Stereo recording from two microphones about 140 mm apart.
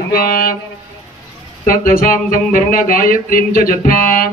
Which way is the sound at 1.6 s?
90° left.